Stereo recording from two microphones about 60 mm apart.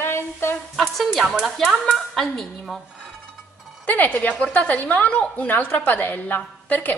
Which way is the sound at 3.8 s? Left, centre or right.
Left.